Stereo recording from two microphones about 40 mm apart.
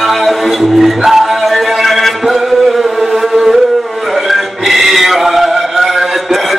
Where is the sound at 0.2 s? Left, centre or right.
Centre.